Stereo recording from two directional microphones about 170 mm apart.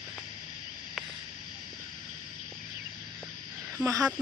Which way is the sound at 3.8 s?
5° right (ahead or behind).